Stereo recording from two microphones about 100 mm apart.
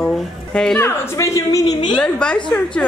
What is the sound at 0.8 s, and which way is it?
Speech, 25° left (ahead or behind).